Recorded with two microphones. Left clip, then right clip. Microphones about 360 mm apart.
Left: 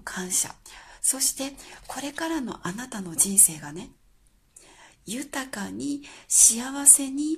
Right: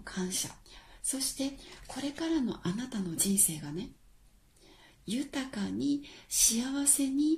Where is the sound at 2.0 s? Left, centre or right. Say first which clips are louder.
Left 3 dB; centre.